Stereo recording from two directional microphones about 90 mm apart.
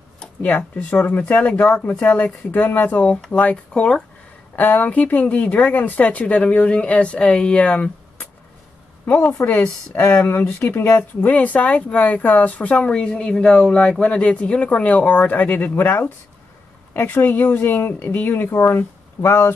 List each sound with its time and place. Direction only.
0.2 s speech: 15° left (ahead or behind)
9.0 s speech: 20° left (ahead or behind)